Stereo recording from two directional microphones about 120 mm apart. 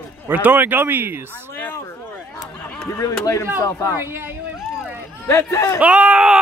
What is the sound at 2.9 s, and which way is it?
Speech, 25° left (ahead or behind).